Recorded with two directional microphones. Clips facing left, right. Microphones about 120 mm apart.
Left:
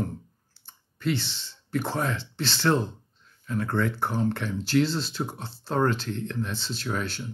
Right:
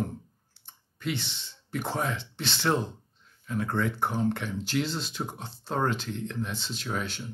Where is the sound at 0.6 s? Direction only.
15° right (ahead or behind).